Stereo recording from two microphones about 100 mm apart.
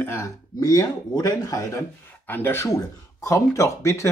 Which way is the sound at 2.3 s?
20° left (ahead or behind).